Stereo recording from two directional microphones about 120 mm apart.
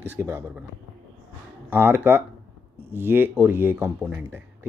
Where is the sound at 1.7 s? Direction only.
15° right (ahead or behind).